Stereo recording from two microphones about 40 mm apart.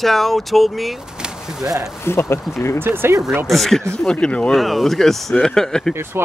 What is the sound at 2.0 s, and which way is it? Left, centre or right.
Speech, left.